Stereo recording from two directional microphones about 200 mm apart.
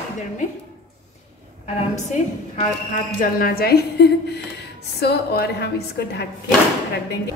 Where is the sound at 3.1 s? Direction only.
45° left (ahead or behind).